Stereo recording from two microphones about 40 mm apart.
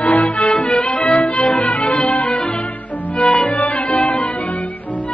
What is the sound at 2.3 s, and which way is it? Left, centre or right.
Music, left.